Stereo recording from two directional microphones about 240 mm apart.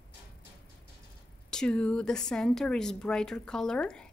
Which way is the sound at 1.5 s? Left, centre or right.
Centre.